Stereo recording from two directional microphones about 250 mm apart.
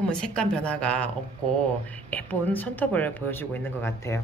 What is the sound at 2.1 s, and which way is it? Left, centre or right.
Speech, centre.